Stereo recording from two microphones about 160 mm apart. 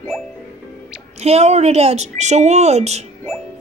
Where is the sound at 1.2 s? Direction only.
40° right (ahead or behind).